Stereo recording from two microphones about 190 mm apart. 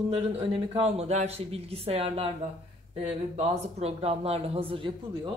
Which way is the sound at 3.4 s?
35° right (ahead or behind).